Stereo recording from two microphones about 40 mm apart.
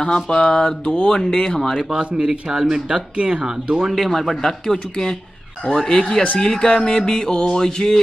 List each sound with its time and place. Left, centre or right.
0.0 s a sound: left
2.0 s speech: right
3.8 s speech: centre
4.1 s music: centre